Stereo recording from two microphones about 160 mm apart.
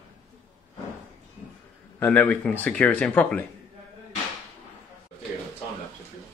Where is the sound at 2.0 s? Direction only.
10° left (ahead or behind).